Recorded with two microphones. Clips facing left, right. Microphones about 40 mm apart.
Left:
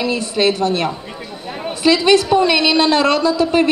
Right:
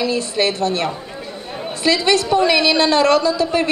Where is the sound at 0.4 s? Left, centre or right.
Centre.